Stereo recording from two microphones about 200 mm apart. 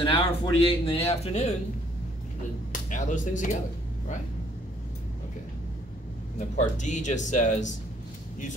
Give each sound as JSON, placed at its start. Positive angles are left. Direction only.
{"t": 0.0, "sound": "speech", "side_deg": 25}
{"t": 2.7, "sound": "speech", "side_deg": 40}
{"t": 6.5, "sound": "speech", "side_deg": 35}